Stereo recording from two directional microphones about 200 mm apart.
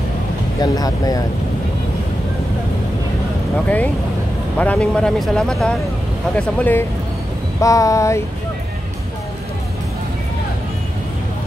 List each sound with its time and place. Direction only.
0.6 s speech: 20° left (ahead or behind)
3.5 s speech: 5° left (ahead or behind)